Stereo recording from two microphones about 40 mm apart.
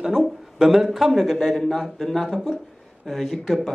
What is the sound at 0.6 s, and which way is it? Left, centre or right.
Speech, centre.